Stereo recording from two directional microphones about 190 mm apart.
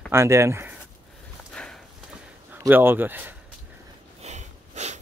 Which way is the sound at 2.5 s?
10° right (ahead or behind).